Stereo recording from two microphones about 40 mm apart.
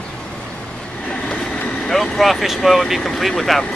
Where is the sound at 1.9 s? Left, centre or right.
Centre.